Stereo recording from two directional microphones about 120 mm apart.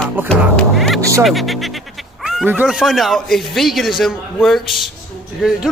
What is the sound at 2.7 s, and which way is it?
A man's voice, centre (ahead or behind).